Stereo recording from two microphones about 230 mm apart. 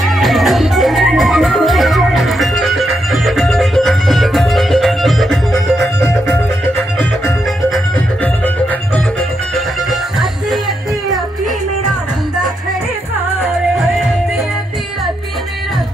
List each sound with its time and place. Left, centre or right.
0.2 s music: centre
9.8 s music: centre